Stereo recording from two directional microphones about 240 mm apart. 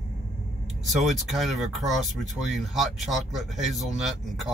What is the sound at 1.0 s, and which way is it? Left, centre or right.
Speech, centre.